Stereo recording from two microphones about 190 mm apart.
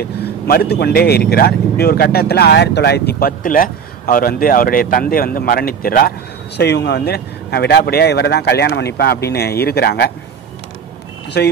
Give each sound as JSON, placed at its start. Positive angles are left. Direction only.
{"t": 0.0, "sound": "speech", "side_deg": 55}
{"t": 11.4, "sound": "speech", "side_deg": 60}